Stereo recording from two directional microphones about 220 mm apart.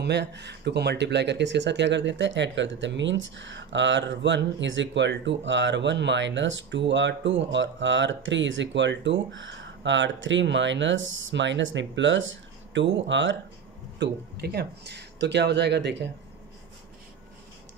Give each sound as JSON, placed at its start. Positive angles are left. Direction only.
{"t": 0.0, "sound": "speech", "side_deg": -50}